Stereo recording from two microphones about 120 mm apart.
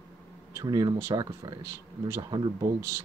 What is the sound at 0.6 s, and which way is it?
Speech, 30° right (ahead or behind).